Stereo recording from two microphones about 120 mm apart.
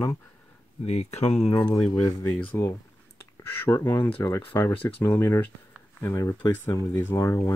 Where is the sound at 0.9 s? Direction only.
70° left (ahead or behind).